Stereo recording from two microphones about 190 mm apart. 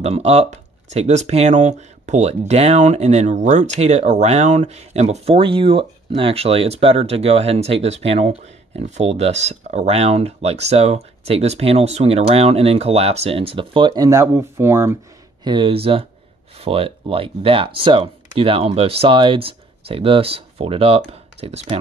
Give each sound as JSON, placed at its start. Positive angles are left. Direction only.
{"t": 0.0, "sound": "speech", "side_deg": -35}
{"t": 15.4, "sound": "speech", "side_deg": -25}